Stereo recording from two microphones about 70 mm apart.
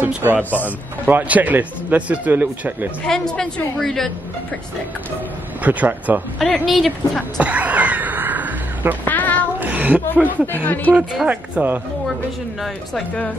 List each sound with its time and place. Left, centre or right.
0.0 s a man's voice: right
0.4 s speech: left
1.0 s a man's voice: right
3.1 s a woman's voice: centre
5.6 s a man's voice: right
6.5 s speech: centre
7.3 s crow: right
9.0 s a sound: left
9.6 s a sound: right
10.2 s speech: left
11.2 s speech: centre
11.6 s a man's voice: right